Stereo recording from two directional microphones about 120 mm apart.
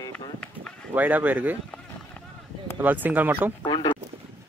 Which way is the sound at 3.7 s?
40° left (ahead or behind).